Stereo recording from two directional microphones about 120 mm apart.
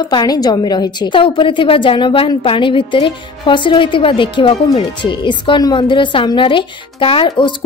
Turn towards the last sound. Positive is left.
turn(degrees=50)  # may be behind; listen again after turning